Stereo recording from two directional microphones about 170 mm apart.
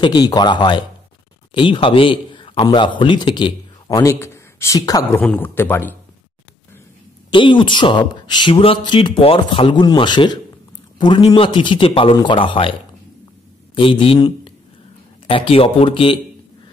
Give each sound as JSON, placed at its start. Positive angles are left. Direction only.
{"t": 0.0, "sound": "a man's voice", "side_deg": 25}
{"t": 7.2, "sound": "a man's voice", "side_deg": 30}
{"t": 13.7, "sound": "a man's voice", "side_deg": 30}